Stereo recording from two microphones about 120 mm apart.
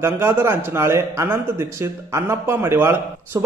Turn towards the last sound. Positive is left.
turn(degrees=-20)  # may be behind; listen again after turning